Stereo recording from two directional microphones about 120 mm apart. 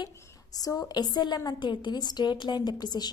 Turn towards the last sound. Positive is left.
turn(degrees=35)  # may be behind; listen again after turning